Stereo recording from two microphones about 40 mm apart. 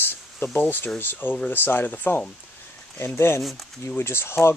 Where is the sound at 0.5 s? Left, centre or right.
Left.